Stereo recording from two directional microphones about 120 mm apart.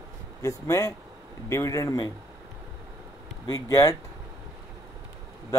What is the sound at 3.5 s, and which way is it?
Speech, 25° left (ahead or behind).